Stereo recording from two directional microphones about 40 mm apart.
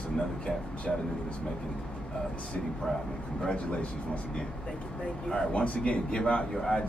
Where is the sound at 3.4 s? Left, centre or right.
Left.